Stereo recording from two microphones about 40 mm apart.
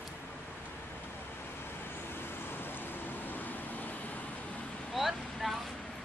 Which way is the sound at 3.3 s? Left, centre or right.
Left.